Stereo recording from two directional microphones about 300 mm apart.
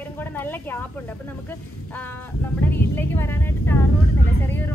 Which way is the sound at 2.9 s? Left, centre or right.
Centre.